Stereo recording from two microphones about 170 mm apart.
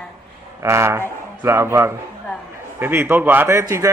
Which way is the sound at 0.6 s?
15° right (ahead or behind).